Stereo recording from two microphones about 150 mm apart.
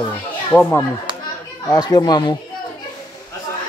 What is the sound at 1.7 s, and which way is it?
Speech, 25° left (ahead or behind).